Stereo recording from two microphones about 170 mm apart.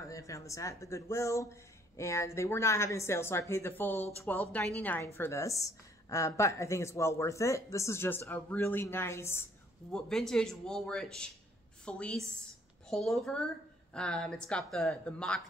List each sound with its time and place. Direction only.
0.1 s speech: 20° left (ahead or behind)
9.9 s speech: 5° left (ahead or behind)